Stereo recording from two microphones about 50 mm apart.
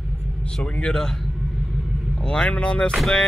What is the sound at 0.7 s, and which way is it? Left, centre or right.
Speech, centre.